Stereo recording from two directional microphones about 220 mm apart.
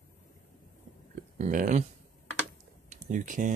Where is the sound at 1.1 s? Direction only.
35° right (ahead or behind).